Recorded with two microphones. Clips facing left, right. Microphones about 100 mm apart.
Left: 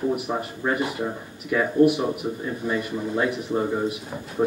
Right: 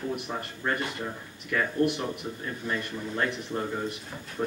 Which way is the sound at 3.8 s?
10° left (ahead or behind).